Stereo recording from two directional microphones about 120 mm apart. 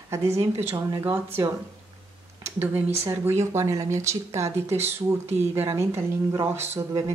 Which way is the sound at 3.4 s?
25° right (ahead or behind).